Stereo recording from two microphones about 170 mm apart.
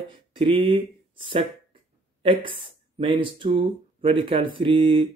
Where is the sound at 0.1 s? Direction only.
30° right (ahead or behind).